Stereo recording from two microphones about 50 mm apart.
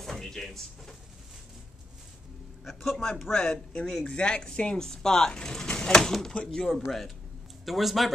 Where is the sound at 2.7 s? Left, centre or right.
Centre.